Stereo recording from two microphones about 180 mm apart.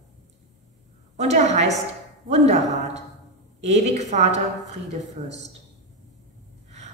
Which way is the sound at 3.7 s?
40° right (ahead or behind).